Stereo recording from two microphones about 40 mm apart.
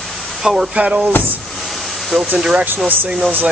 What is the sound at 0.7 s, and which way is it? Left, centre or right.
Speech, right.